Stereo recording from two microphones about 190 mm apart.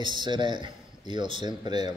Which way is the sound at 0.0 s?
25° right (ahead or behind).